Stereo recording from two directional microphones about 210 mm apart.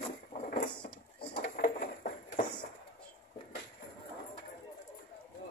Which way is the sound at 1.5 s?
40° left (ahead or behind).